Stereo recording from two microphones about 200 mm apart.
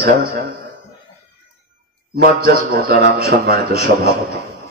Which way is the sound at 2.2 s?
50° right (ahead or behind).